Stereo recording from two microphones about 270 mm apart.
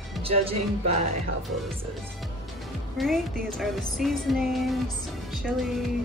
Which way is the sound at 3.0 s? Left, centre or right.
Centre.